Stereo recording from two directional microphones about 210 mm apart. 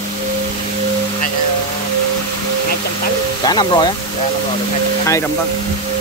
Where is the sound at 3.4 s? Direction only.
20° left (ahead or behind).